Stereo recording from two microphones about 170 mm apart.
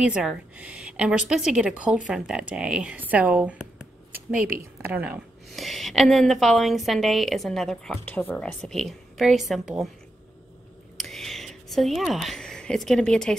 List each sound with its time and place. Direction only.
0.0 s a woman's voice: 5° right (ahead or behind)
4.8 s a woman's voice: 10° right (ahead or behind)
5.5 s a woman's voice: centre (ahead or behind)
11.0 s a sound: centre (ahead or behind)